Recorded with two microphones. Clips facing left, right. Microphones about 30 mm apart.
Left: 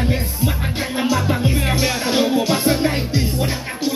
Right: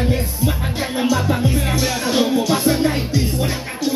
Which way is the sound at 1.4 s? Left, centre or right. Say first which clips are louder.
Even; left.